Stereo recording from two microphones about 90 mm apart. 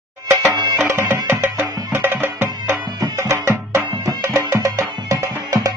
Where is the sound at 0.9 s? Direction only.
25° right (ahead or behind).